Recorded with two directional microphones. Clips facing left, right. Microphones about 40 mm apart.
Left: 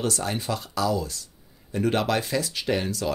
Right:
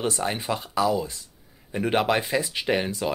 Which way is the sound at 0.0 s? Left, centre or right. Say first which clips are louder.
Right 1 dB; right.